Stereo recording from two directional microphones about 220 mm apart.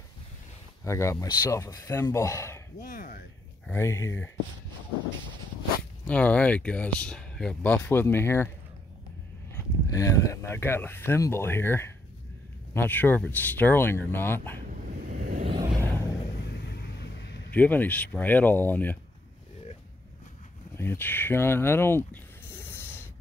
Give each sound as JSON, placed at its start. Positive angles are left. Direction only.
{"t": 0.8, "sound": "speech", "side_deg": 15}
{"t": 2.8, "sound": "speech", "side_deg": 40}
{"t": 3.6, "sound": "speech", "side_deg": 10}
{"t": 6.0, "sound": "speech", "side_deg": 5}
{"t": 9.5, "sound": "speech", "side_deg": 15}
{"t": 14.9, "sound": "vehicle", "side_deg": -40}
{"t": 15.4, "sound": "vehicle", "side_deg": -20}
{"t": 16.6, "sound": "vehicle", "side_deg": 50}
{"t": 17.6, "sound": "speech", "side_deg": 10}
{"t": 20.7, "sound": "speech", "side_deg": 10}